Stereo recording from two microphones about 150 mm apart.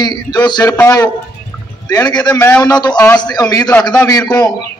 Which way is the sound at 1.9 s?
30° left (ahead or behind).